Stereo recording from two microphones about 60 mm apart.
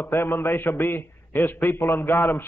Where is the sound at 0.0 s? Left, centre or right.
Left.